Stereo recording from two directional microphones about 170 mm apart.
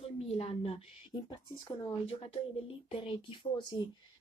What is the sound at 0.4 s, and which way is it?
Speech, 35° left (ahead or behind).